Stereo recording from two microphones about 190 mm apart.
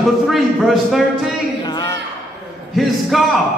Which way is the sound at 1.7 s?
20° left (ahead or behind).